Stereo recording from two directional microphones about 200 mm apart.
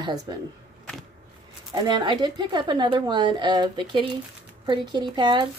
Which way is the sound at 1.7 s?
20° right (ahead or behind).